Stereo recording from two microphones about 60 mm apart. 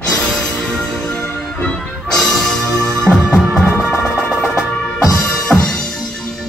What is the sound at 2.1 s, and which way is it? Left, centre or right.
Music, centre.